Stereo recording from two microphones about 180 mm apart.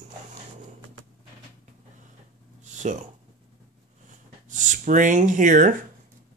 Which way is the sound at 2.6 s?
40° right (ahead or behind).